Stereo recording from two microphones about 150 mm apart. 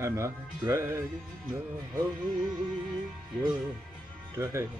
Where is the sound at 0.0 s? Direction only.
20° right (ahead or behind).